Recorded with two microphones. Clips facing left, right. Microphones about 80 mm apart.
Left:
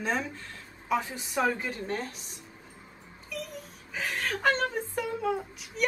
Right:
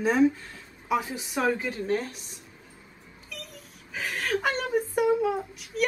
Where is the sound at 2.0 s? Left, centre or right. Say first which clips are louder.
Right 1 dB; left.